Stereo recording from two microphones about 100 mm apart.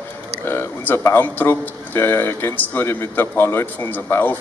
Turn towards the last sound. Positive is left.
turn(degrees=20)  # may be behind; listen again after turning